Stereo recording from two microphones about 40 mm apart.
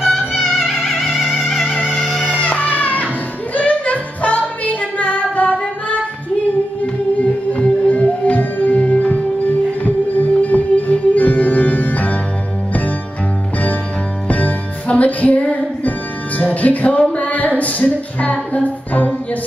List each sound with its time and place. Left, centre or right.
0.7 s music: centre
2.2 s music: left
3.5 s female singing: left
7.2 s music: left
14.2 s music: left